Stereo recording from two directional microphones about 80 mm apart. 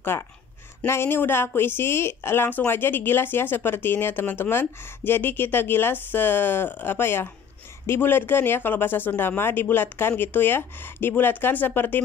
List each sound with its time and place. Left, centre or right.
0.1 s speech: left
0.8 s speech: left